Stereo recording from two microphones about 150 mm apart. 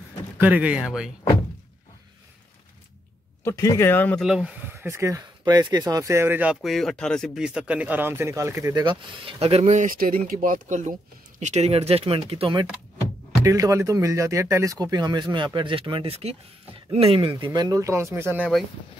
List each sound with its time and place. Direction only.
0.4 s speech: 10° right (ahead or behind)
3.4 s speech: 20° left (ahead or behind)
4.2 s speech: 5° right (ahead or behind); by 12.6 s 40° right (ahead or behind)
13.4 s speech: 20° right (ahead or behind); by 17.3 s 40° right (ahead or behind)
17.4 s speech: 25° right (ahead or behind)